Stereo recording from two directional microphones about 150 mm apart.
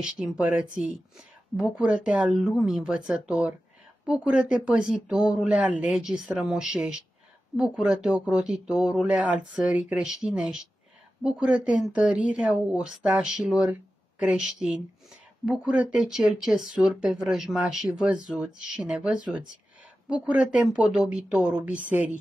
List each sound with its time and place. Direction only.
0.0 s speech: 5° right (ahead or behind)